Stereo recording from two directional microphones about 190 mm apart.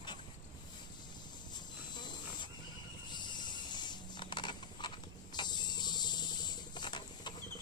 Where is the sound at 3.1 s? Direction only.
25° left (ahead or behind).